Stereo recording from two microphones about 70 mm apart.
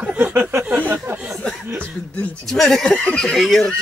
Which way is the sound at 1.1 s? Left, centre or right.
Right.